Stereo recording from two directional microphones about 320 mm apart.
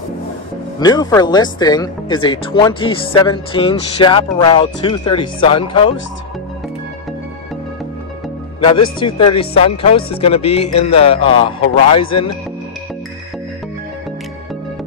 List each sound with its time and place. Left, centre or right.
0.7 s speech: centre
8.5 s a man's voice: centre